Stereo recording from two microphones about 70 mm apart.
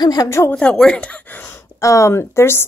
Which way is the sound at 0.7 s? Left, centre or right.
Centre.